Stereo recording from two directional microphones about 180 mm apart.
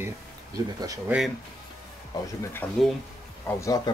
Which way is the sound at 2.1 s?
15° left (ahead or behind).